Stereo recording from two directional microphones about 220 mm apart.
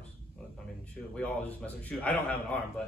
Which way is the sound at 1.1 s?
5° left (ahead or behind).